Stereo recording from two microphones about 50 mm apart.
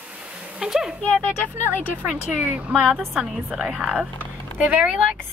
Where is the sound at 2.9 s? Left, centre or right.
Centre.